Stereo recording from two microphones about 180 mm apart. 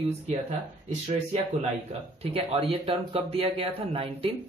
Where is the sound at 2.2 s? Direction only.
30° right (ahead or behind).